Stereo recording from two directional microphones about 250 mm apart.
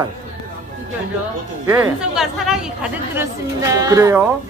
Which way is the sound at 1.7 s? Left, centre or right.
Centre.